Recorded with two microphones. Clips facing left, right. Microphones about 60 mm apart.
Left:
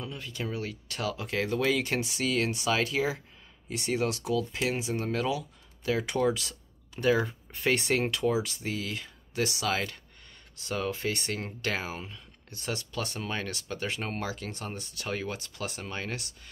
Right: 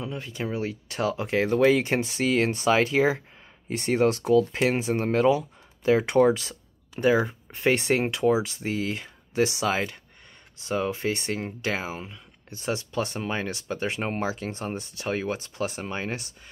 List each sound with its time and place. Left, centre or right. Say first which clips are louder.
0.0 s speech: right 5 dB; right